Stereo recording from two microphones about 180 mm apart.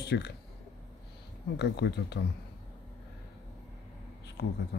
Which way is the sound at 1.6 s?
70° left (ahead or behind).